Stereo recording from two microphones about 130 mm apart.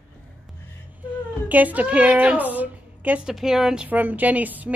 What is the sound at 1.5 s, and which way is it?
A woman's voice, 10° right (ahead or behind).